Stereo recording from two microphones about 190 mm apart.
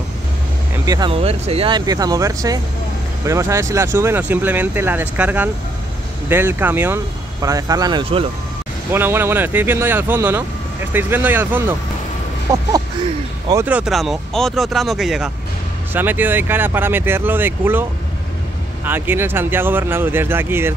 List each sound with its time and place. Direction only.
0.8 s speech: 20° right (ahead or behind)
8.9 s speech: 10° right (ahead or behind)
13.7 s speech: 5° right (ahead or behind)
18.9 s speech: 10° right (ahead or behind)